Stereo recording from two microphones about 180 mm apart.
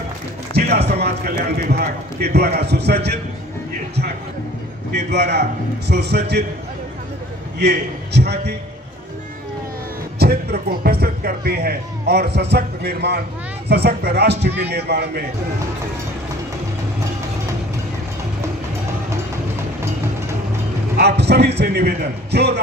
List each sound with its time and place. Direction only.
0.5 s speech: 65° right (ahead or behind)
4.9 s a man's voice: 70° right (ahead or behind)
7.5 s a man's voice: 65° right (ahead or behind)
10.1 s a man's voice: 60° right (ahead or behind)
20.9 s a man's voice: 65° right (ahead or behind)